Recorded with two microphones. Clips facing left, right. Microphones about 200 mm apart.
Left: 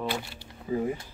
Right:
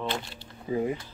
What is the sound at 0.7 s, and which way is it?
Speech, 20° right (ahead or behind).